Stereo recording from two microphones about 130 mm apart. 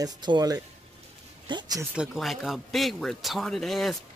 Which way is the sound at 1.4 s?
35° right (ahead or behind).